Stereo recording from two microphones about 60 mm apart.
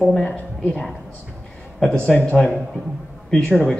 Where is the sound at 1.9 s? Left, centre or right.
Centre.